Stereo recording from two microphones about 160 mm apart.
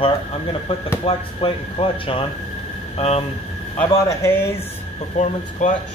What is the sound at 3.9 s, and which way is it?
Speech, 15° left (ahead or behind).